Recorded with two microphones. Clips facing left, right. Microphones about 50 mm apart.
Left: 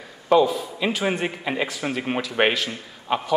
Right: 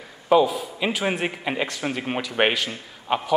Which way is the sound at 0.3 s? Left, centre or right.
Centre.